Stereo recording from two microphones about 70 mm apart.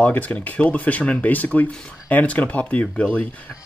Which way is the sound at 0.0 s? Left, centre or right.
Centre.